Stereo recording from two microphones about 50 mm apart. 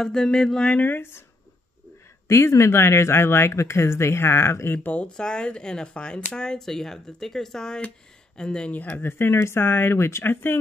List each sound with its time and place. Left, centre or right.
0.0 s speech: centre
0.7 s speech: left
2.2 s speech: left
3.5 s speech: left
4.7 s speech: left
5.1 s speech: centre
8.7 s speech: left
9.0 s speech: left
10.3 s speech: left